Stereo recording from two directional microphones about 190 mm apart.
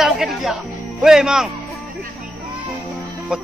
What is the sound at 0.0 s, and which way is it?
Speech, centre (ahead or behind).